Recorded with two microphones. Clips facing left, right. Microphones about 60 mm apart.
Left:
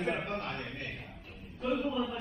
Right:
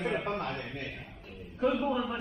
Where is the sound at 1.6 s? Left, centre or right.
Right.